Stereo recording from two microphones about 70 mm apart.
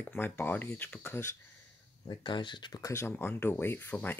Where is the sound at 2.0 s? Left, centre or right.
Left.